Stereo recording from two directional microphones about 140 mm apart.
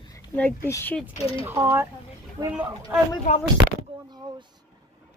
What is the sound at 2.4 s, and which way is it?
Speech, 25° right (ahead or behind).